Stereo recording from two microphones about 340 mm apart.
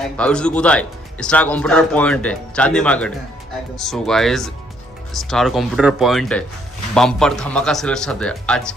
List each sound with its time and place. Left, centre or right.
0.2 s speech: centre